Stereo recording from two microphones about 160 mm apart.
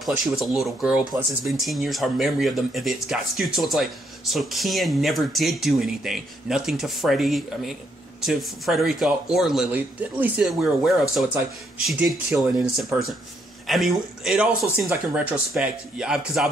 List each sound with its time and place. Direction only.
0.0 s speech: centre (ahead or behind)